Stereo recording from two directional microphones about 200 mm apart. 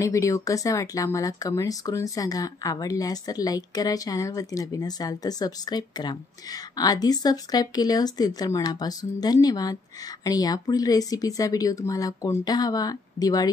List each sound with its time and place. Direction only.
0.0 s speech: 15° left (ahead or behind)